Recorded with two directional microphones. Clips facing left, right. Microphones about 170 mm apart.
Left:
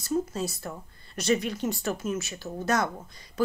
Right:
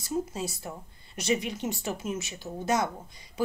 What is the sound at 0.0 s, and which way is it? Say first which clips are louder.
Speech: left 3 dB; 10° right (ahead or behind).